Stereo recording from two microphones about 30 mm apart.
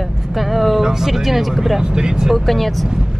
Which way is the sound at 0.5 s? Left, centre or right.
Centre.